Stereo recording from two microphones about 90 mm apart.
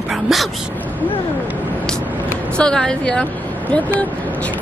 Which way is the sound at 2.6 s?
5° left (ahead or behind).